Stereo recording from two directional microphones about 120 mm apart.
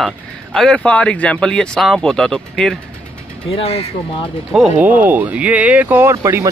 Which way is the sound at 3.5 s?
55° left (ahead or behind).